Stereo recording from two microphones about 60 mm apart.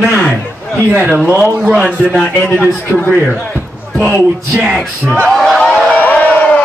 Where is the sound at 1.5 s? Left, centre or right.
Centre.